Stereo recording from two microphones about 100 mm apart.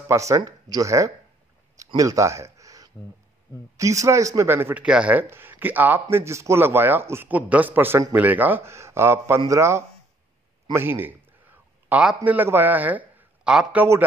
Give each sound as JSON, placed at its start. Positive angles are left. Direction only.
{"t": 0.1, "sound": "speech", "side_deg": -30}
{"t": 4.8, "sound": "speech", "side_deg": -10}
{"t": 5.2, "sound": "speech", "side_deg": -20}
{"t": 10.7, "sound": "a sound", "side_deg": -20}
{"t": 12.3, "sound": "a man's voice", "side_deg": -20}